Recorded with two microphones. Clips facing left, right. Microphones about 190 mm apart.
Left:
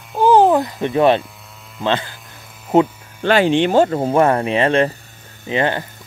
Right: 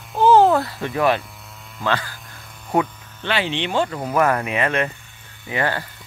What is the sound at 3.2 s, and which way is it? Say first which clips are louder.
Speech: left 9 dB; 45° left (ahead or behind).